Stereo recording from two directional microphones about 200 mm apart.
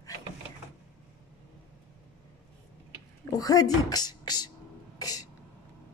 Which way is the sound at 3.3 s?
20° left (ahead or behind).